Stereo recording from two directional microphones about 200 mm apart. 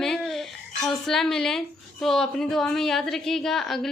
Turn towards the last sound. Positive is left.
turn(degrees=0)  # may be behind; listen again after turning